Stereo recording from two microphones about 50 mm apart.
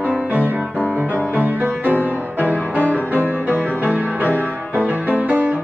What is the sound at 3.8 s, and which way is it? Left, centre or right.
Music, right.